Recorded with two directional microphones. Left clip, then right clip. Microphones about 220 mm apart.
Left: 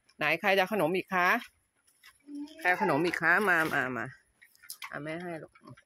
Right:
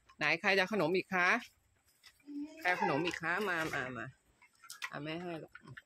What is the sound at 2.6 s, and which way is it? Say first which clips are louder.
Speech: left 6 dB; 30° left (ahead or behind).